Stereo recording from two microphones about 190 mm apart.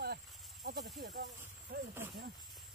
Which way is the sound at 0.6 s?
50° right (ahead or behind).